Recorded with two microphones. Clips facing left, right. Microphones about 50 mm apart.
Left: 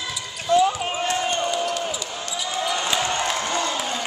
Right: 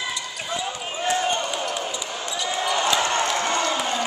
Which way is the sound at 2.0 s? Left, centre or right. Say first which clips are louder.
Right 1 dB; centre.